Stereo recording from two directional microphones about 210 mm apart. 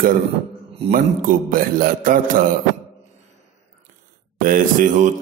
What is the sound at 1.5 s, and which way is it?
Speech, 40° right (ahead or behind).